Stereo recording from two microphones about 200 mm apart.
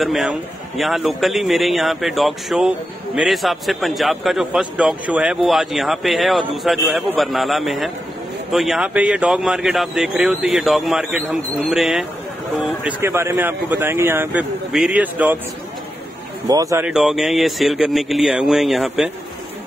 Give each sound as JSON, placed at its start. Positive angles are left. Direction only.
{"t": 0.0, "sound": "speech", "side_deg": 0}
{"t": 13.0, "sound": "speech", "side_deg": -10}
{"t": 16.4, "sound": "speech", "side_deg": -15}
{"t": 16.8, "sound": "speech", "side_deg": 0}